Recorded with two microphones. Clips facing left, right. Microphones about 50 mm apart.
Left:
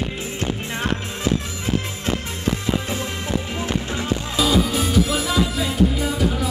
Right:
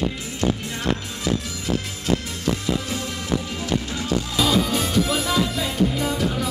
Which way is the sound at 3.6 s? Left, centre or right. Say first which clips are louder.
Left 1 dB; left.